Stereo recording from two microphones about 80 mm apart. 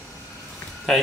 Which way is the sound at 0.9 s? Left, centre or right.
Centre.